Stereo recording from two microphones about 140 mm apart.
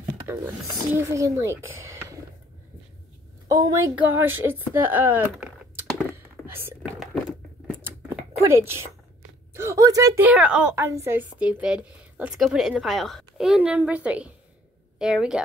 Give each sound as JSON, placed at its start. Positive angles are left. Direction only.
{"t": 0.3, "sound": "a woman's voice", "side_deg": -20}
{"t": 3.5, "sound": "a woman's voice", "side_deg": -25}
{"t": 6.4, "sound": "whispering", "side_deg": -20}
{"t": 8.4, "sound": "speech", "side_deg": -20}
{"t": 10.2, "sound": "a woman's voice", "side_deg": -10}